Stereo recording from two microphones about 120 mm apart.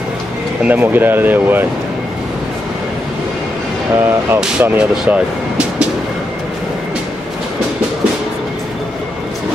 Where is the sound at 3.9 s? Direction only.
20° right (ahead or behind).